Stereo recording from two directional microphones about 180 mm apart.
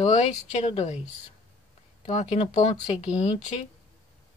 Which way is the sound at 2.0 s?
35° left (ahead or behind).